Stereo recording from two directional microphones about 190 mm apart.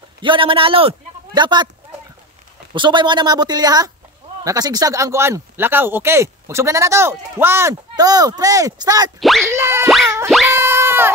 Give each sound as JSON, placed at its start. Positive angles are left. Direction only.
{"t": 0.2, "sound": "a man's voice", "side_deg": -25}
{"t": 2.7, "sound": "a woman's voice", "side_deg": -25}
{"t": 10.5, "sound": "boing", "side_deg": -10}